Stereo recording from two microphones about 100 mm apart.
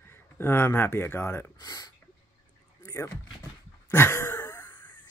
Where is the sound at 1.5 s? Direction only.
40° left (ahead or behind).